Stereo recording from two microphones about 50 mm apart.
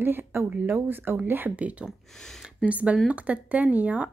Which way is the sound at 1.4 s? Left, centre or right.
Right.